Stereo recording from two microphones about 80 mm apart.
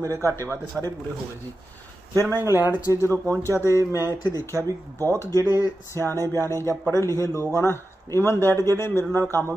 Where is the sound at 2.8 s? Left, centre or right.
Left.